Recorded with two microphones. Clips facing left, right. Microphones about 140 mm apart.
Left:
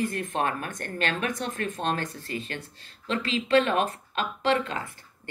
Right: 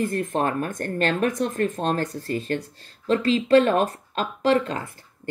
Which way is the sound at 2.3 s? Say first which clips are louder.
Right 8 dB; 50° right (ahead or behind).